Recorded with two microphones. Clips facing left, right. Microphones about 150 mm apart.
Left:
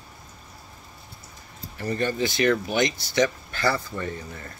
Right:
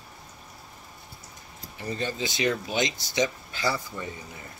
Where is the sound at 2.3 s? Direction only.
15° right (ahead or behind).